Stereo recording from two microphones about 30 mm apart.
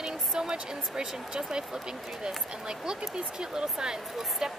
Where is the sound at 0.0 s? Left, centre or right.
Centre.